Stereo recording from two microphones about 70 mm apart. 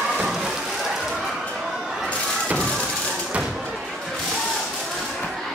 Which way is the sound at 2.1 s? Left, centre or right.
Centre.